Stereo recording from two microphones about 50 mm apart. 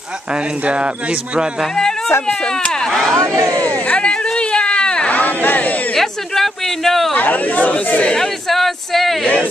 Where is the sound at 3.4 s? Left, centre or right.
Right.